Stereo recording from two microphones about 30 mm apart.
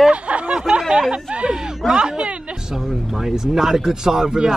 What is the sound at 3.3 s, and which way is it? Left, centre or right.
Speech, centre.